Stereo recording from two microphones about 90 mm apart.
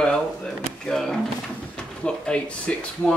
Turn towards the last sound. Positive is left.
turn(degrees=10)  # may be behind; listen again after turning